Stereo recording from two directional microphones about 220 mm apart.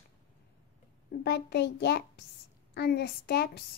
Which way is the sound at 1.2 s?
50° left (ahead or behind).